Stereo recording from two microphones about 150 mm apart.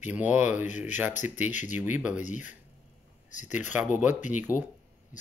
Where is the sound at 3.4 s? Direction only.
10° right (ahead or behind).